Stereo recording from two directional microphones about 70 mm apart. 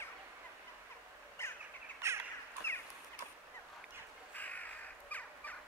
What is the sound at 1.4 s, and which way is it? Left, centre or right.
Bird, left.